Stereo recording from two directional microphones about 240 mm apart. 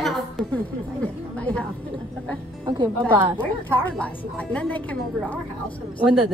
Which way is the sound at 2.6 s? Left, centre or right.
Centre.